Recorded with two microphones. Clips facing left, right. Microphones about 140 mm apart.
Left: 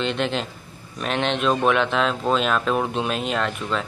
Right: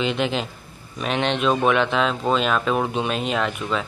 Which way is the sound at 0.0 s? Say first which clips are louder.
Right 1 dB; 5° right (ahead or behind).